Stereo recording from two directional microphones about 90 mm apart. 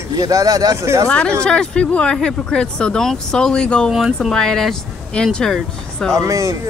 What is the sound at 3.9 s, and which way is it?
Speech, 5° right (ahead or behind).